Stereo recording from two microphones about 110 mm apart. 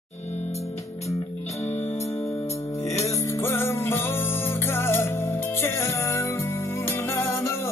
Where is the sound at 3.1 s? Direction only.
25° left (ahead or behind).